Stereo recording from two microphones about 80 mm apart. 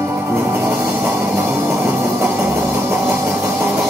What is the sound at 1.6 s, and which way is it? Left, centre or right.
Music, right.